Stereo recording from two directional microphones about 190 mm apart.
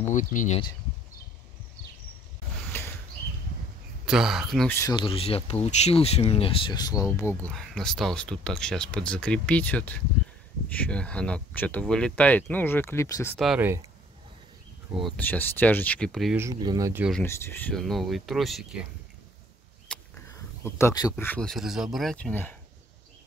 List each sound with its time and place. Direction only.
0.1 s speech: 40° left (ahead or behind)
4.0 s speech: centre (ahead or behind)
4.6 s speech: 15° left (ahead or behind)
4.9 s speech: 30° left (ahead or behind); by 13.4 s 15° left (ahead or behind)
15.0 s speech: 5° left (ahead or behind)
16.3 s speech: 20° right (ahead or behind)
17.2 s speech: 10° left (ahead or behind)
19.9 s a sound: 5° left (ahead or behind)
20.2 s speech: 15° left (ahead or behind)